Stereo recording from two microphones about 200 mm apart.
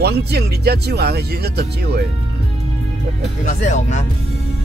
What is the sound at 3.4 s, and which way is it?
Speech, 35° left (ahead or behind).